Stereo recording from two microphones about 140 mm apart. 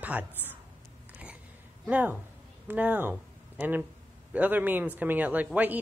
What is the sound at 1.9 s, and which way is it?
Speech, 10° right (ahead or behind).